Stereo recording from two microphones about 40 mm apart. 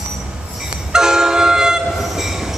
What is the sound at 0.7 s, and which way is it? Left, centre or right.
Train, centre.